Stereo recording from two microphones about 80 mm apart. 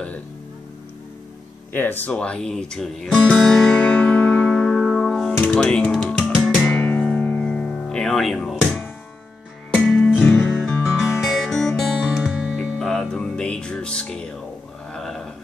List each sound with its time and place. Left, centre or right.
1.7 s speech: left; by 3.7 s centre
3.7 s music: centre
6.0 s music: centre
9.9 s music: centre
10.5 s music: centre
12.1 s music: centre
12.7 s music: centre
14.9 s a sound: centre